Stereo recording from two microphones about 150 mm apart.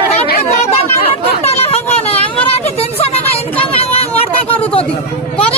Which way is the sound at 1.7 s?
40° left (ahead or behind).